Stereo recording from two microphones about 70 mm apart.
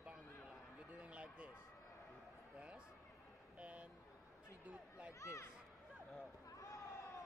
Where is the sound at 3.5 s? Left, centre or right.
Centre.